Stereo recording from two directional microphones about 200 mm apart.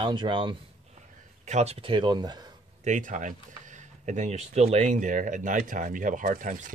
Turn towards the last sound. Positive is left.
turn(degrees=-40)  # may be behind; listen again after turning